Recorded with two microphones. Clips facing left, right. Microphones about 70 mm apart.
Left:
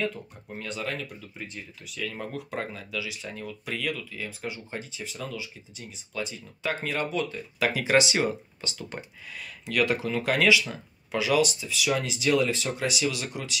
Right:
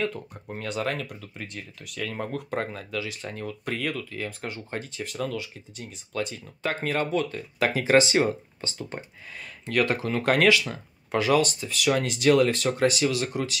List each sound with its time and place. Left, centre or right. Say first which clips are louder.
0.0 s speech: right 2 dB; right